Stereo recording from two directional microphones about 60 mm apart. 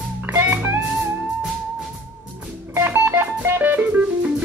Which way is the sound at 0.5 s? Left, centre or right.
Right.